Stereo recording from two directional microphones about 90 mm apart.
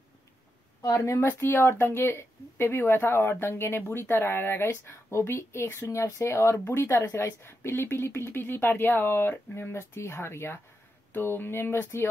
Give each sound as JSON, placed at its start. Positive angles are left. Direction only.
{"t": 0.8, "sound": "a woman's voice", "side_deg": 35}